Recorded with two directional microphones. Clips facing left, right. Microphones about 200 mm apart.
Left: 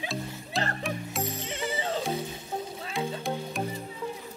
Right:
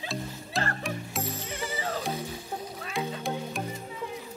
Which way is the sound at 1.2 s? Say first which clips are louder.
Left 2 dB; 20° left (ahead or behind).